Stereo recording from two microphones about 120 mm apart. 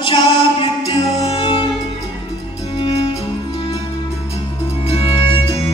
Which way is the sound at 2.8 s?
55° left (ahead or behind).